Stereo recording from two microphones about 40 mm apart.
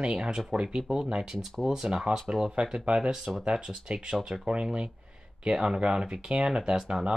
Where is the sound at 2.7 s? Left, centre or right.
Right.